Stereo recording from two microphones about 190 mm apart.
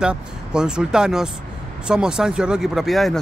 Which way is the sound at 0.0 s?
5° right (ahead or behind).